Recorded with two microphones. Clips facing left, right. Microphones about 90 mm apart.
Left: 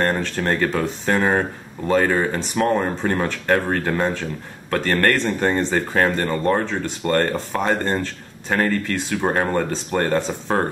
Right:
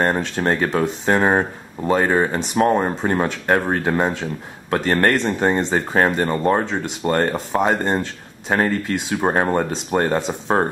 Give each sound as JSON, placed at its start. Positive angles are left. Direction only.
{"t": 0.1, "sound": "speech", "side_deg": -20}